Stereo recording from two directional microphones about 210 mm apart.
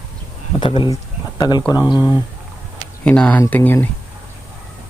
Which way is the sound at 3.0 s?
5° left (ahead or behind).